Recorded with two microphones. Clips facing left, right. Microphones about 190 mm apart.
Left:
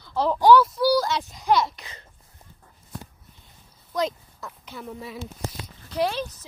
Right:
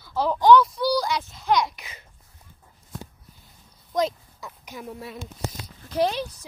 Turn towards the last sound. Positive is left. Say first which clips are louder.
# even
turn(degrees=-15)  # may be behind; listen again after turning